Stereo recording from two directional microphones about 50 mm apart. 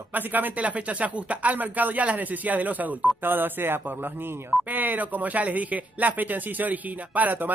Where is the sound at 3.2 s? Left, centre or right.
Right.